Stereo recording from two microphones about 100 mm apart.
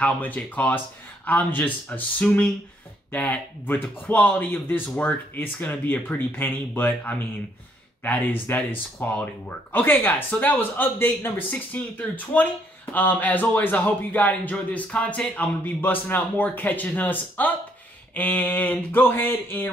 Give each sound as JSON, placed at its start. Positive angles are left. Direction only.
{"t": 0.0, "sound": "a man's voice", "side_deg": 15}